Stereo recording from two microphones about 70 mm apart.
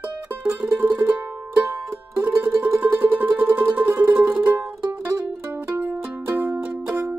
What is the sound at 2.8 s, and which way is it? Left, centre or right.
Music, right.